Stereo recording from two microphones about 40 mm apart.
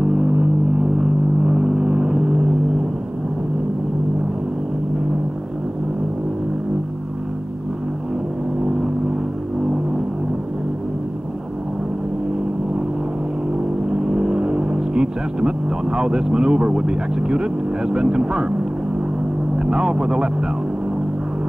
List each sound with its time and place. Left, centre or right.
0.0 s vehicle: right
13.8 s vehicle: centre
19.5 s speech: right